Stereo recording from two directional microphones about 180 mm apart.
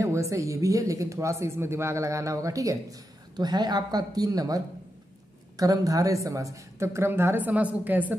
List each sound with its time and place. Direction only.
0.0 s speech: 15° right (ahead or behind)